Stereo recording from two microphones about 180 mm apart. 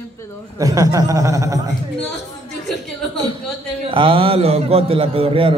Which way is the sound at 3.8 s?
30° right (ahead or behind).